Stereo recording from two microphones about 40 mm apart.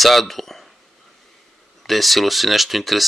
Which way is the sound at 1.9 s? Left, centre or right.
Centre.